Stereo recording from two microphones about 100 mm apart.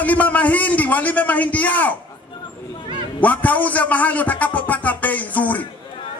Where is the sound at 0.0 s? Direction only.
15° left (ahead or behind).